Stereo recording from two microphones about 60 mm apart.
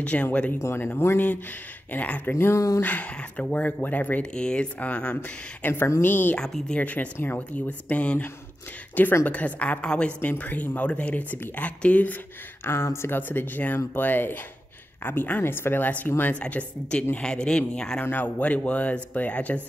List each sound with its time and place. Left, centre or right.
0.0 s speech: left
0.7 s speech: left
2.3 s speech: left
2.8 s speech: left
4.2 s speech: centre; by 6.3 s left
6.3 s speech: centre
6.8 s speech: left
12.6 s speech: left
13.3 s speech: left
17.2 s speech: centre
18.1 s speech: left